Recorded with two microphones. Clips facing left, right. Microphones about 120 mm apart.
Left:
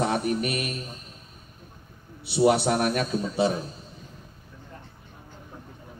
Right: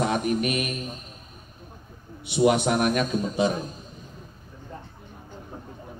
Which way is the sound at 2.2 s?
35° left (ahead or behind).